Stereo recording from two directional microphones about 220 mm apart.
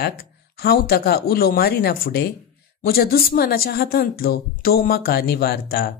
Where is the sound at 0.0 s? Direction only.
45° left (ahead or behind).